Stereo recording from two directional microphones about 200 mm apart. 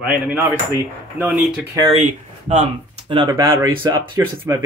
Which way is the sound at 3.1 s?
20° right (ahead or behind).